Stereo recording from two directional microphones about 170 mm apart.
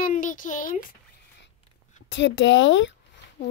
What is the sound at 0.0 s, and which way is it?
Speech, 50° left (ahead or behind).